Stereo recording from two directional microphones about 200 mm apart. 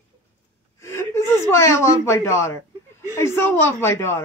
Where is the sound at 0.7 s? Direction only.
15° left (ahead or behind).